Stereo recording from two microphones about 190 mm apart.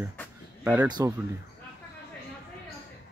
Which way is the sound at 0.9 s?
20° right (ahead or behind).